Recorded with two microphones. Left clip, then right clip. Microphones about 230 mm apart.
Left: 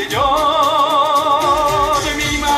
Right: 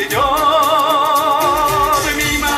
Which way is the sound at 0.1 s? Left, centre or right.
Right.